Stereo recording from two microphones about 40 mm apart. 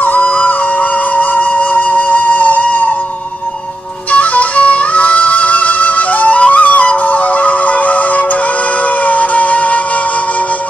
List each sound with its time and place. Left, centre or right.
0.0 s flute: left
4.1 s music: left